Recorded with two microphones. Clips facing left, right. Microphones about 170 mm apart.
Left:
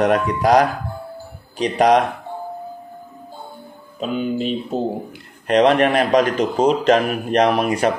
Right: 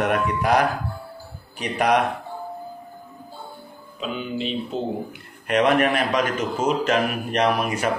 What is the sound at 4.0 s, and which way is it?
A man's voice, 45° left (ahead or behind).